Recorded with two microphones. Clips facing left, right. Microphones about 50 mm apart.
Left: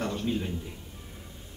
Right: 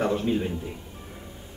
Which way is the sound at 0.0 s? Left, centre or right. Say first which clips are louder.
Right 6 dB; centre.